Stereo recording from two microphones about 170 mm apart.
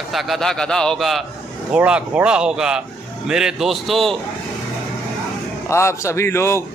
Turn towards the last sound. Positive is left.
turn(degrees=15)  # may be behind; listen again after turning